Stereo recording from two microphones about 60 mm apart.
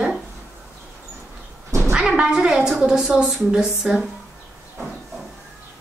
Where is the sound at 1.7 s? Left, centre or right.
Right.